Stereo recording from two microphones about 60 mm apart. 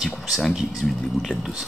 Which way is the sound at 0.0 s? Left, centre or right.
Centre.